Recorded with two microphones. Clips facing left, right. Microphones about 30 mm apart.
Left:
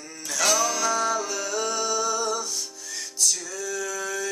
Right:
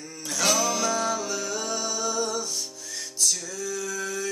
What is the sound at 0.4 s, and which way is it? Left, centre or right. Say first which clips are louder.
Music: left 1 dB; centre.